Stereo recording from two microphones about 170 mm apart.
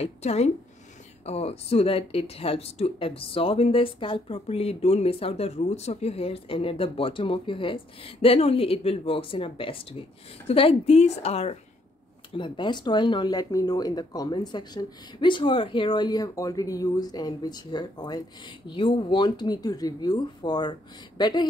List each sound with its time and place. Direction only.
0.0 s speech: 40° left (ahead or behind)
12.4 s speech: 25° left (ahead or behind)